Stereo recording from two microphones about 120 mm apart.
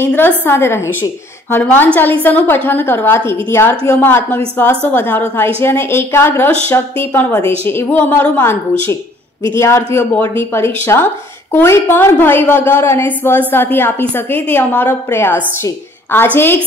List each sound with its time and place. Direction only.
0.0 s a woman's voice: 15° left (ahead or behind)